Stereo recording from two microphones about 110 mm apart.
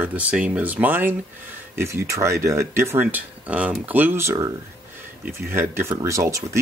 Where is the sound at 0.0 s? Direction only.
15° right (ahead or behind).